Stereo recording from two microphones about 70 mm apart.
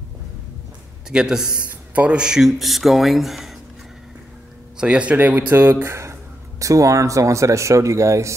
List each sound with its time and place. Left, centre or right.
1.1 s a man's voice: centre
4.7 s a man's voice: centre
5.1 s speech: right
6.6 s speech: right